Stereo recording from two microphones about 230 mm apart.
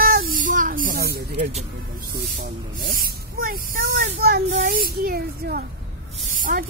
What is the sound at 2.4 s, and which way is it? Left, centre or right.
Speech, right.